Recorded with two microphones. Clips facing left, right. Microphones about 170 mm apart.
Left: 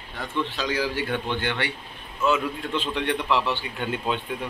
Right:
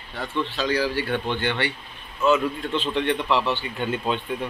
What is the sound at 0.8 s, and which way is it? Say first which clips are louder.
Speech: right 2 dB; 15° left (ahead or behind).